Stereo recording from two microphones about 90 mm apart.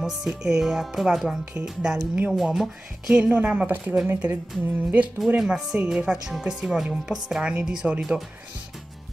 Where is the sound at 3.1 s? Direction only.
15° right (ahead or behind).